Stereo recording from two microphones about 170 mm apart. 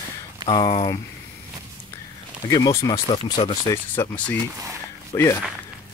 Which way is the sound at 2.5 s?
20° left (ahead or behind).